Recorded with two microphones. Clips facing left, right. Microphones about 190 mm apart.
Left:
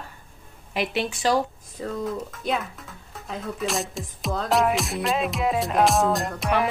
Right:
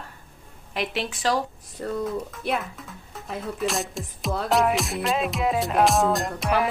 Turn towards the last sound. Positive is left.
turn(degrees=0)  # may be behind; listen again after turning